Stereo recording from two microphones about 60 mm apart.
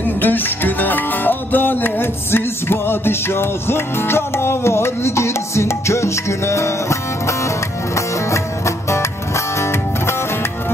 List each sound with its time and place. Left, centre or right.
0.2 s music: left